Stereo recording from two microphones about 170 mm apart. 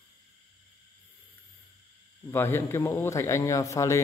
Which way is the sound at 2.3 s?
15° left (ahead or behind).